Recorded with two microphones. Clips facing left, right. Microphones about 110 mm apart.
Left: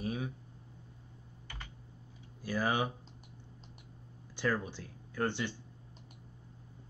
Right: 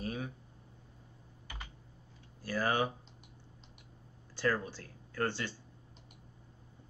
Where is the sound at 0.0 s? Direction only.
15° left (ahead or behind).